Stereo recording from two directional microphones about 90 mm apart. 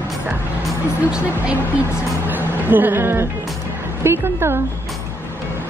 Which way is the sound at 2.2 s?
20° right (ahead or behind).